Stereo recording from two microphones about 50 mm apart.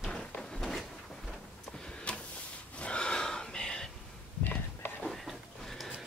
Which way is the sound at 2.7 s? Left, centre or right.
Left.